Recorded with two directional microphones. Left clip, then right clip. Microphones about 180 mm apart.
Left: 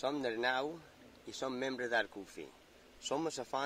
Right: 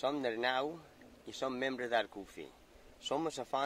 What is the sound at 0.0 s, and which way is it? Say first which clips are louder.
Speech: right 1 dB; 30° right (ahead or behind).